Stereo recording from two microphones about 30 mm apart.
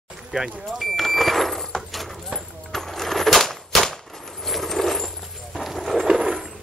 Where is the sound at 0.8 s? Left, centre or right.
Centre.